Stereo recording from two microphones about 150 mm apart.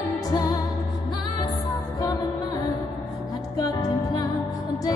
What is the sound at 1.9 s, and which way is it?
Music, 20° left (ahead or behind).